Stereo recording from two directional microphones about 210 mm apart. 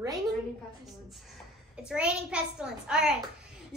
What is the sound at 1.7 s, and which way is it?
A child's voice, 5° right (ahead or behind).